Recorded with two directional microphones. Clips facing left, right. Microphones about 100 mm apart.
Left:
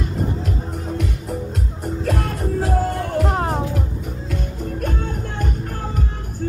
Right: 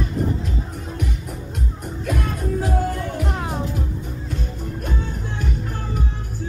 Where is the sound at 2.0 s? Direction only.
70° left (ahead or behind).